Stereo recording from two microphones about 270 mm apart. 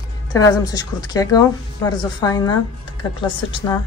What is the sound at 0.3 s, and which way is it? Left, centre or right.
A woman's voice, centre.